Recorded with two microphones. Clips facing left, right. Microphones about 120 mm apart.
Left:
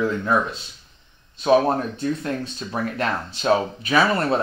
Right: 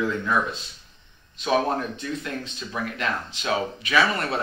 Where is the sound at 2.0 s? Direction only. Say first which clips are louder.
Left 6 dB; 40° left (ahead or behind).